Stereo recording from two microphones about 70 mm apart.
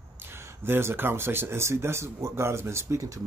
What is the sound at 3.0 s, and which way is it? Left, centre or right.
Speech, right.